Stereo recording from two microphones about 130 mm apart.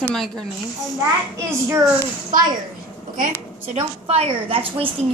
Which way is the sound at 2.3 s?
90° right.